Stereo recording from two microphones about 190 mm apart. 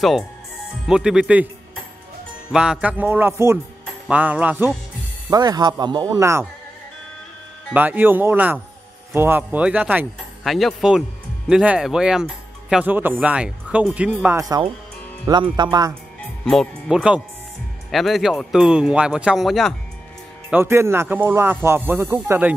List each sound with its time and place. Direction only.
0.8 s speech: 5° right (ahead or behind)
2.5 s speech: 5° right (ahead or behind)
5.3 s speech: 20° right (ahead or behind)
7.7 s speech: 10° right (ahead or behind)
14.2 s speech: 15° right (ahead or behind)
16.4 s speech: centre (ahead or behind)
20.4 s speech: 10° right (ahead or behind)